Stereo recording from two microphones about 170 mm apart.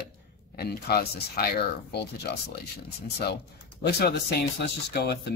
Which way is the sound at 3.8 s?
70° left (ahead or behind).